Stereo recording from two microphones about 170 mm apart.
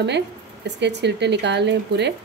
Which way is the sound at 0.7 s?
90° right.